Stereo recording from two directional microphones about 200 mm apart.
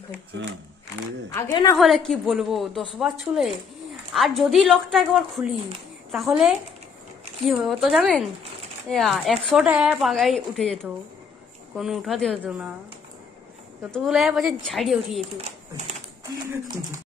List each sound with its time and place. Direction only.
0.3 s speech: 65° right (ahead or behind)
1.5 s a woman's voice: 20° left (ahead or behind)
1.8 s a woman's voice: centre (ahead or behind)
13.9 s a woman's voice: centre (ahead or behind)